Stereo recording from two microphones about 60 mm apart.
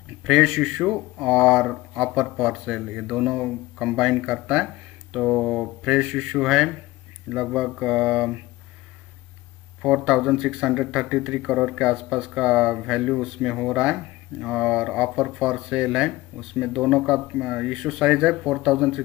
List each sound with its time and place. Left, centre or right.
0.2 s speech: centre
5.1 s a sound: centre
5.9 s speech: centre
9.8 s speech: centre